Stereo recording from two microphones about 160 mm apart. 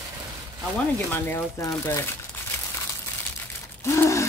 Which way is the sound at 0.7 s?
10° left (ahead or behind).